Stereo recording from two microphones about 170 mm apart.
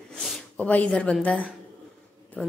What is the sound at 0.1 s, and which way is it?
Speech, centre (ahead or behind).